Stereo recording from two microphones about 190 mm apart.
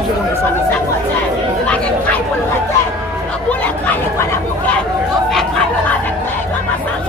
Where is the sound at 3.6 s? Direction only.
10° left (ahead or behind).